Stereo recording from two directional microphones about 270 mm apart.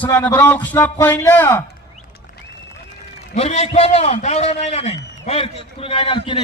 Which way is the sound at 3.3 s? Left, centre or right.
Left.